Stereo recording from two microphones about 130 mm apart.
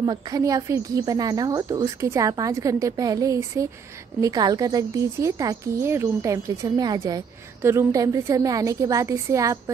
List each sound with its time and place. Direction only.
0.0 s a woman's voice: 30° right (ahead or behind)